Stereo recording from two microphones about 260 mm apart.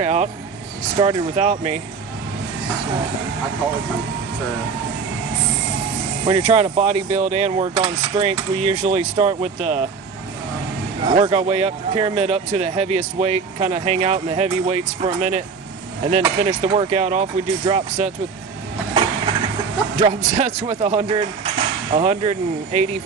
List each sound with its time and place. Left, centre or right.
0.0 s vehicle: right
0.9 s speech: right
6.2 s speech: right
11.1 s speech: right
20.0 s speech: right